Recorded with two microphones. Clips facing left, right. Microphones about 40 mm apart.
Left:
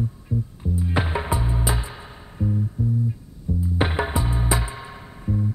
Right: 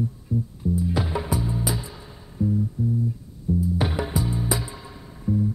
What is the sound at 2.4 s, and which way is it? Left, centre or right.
Music, left.